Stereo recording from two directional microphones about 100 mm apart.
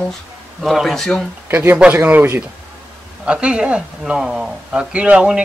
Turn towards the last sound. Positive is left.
turn(degrees=-10)  # may be behind; listen again after turning